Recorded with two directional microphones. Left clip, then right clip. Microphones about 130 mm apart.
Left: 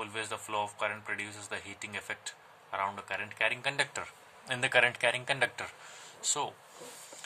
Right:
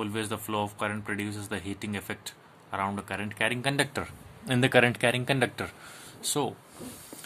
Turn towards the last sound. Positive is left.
turn(degrees=-25)  # may be behind; listen again after turning